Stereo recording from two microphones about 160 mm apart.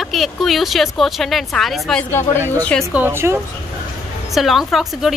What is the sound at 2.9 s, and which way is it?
Speech, 15° right (ahead or behind).